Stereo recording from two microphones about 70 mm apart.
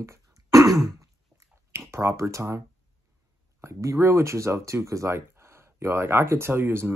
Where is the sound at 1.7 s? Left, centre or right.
Right.